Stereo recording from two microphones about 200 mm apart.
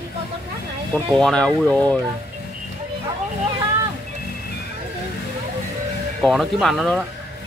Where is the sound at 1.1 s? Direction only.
5° left (ahead or behind).